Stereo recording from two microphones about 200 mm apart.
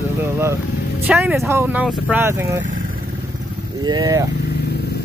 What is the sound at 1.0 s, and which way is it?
Speech, 5° right (ahead or behind).